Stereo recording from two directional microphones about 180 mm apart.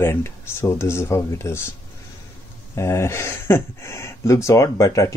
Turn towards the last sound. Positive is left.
turn(degrees=15)  # may be behind; listen again after turning